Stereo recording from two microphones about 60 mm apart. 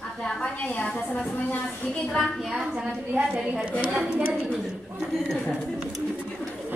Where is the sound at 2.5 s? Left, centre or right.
Centre.